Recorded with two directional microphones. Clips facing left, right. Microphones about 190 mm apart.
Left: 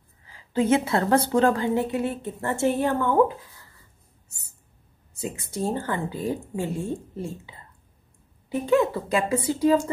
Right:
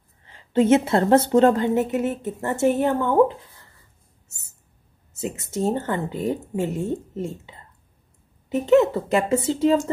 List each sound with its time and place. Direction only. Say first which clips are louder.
0.3 s a woman's voice: right 4 dB; 25° right (ahead or behind)
5.2 s a woman's voice: right 4 dB; 25° right (ahead or behind)
8.6 s a woman's voice: right 5 dB; 25° right (ahead or behind)